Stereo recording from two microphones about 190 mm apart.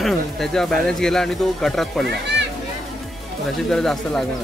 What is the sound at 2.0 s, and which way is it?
Speech, 65° right (ahead or behind).